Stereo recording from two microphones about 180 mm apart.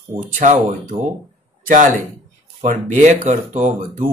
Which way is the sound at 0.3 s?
45° right (ahead or behind).